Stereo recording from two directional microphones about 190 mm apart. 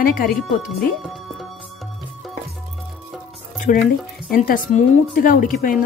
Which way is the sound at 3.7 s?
45° left (ahead or behind).